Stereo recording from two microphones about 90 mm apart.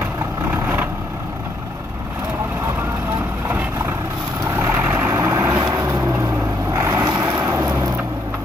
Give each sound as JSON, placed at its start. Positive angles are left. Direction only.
{"t": 4.6, "sound": "vehicle", "side_deg": -20}